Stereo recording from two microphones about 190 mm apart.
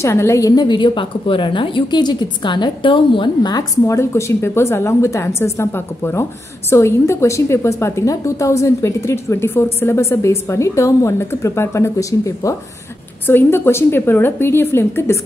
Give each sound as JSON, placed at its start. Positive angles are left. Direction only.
{"t": 0.0, "sound": "a woman's voice", "side_deg": 15}